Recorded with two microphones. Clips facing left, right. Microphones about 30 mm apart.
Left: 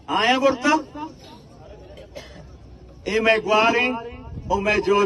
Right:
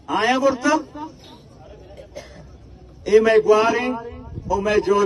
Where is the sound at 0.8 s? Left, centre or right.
Left.